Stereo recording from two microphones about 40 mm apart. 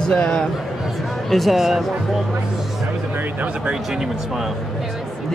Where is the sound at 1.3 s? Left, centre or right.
Centre.